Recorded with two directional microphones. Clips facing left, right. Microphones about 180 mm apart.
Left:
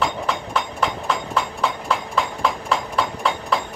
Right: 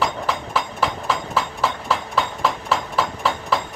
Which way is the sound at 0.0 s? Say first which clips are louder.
Even; centre (ahead or behind).